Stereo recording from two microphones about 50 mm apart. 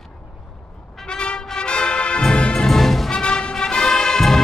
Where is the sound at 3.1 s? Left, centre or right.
Centre.